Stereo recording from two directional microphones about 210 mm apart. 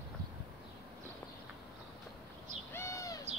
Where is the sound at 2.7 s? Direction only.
15° left (ahead or behind).